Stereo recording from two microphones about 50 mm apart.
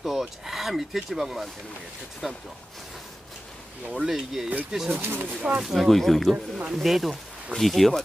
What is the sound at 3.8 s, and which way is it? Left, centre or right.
Speech, centre.